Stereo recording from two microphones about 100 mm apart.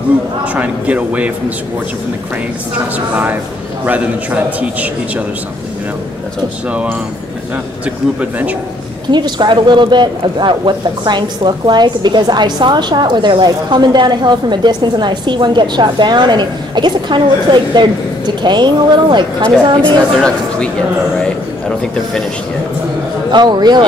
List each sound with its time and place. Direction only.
0.5 s a man's voice: 15° right (ahead or behind)
3.8 s a man's voice: 15° right (ahead or behind)
6.7 s a man's voice: 15° right (ahead or behind)
9.1 s speech: 50° right (ahead or behind)
19.8 s a man's voice: 10° left (ahead or behind)
23.3 s speech: 45° right (ahead or behind)